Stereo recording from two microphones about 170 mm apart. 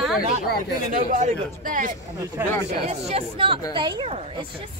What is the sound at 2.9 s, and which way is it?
Speech, 35° right (ahead or behind).